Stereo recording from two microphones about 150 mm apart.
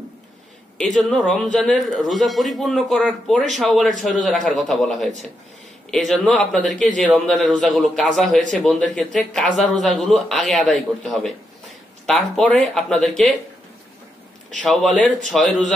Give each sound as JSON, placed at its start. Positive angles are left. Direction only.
{"t": 0.7, "sound": "a man's voice", "side_deg": 0}
{"t": 14.6, "sound": "a man's voice", "side_deg": 0}
{"t": 15.0, "sound": "speech", "side_deg": -55}